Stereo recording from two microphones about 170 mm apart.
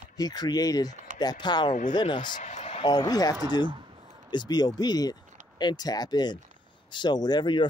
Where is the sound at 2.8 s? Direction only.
25° left (ahead or behind).